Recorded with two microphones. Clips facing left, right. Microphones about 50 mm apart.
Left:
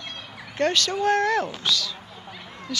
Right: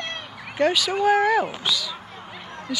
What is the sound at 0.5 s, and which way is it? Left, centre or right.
Speech, centre.